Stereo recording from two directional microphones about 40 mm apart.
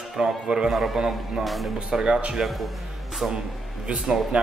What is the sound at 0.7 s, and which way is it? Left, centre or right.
A man's voice, centre.